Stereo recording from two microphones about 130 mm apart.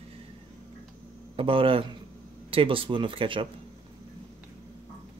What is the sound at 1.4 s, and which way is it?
Speech, 45° right (ahead or behind).